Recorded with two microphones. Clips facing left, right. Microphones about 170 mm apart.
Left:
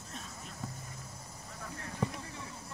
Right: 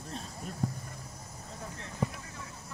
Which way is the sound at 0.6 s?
40° right (ahead or behind).